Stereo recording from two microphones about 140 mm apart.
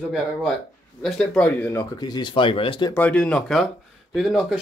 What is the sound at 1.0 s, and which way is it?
Speech, 5° left (ahead or behind).